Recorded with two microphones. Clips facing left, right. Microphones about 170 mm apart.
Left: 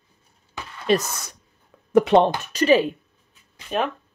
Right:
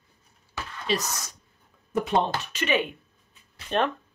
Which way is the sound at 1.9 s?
80° left.